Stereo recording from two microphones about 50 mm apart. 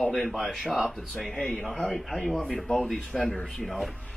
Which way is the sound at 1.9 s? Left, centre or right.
Centre.